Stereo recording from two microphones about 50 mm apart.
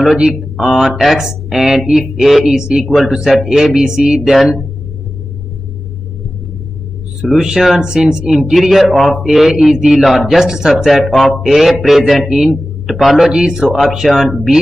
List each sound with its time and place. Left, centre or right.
0.0 s speech: centre
2.2 s speech: centre
2.5 s speech: centre
4.2 s speech: centre
7.2 s speech: centre
13.3 s speech: centre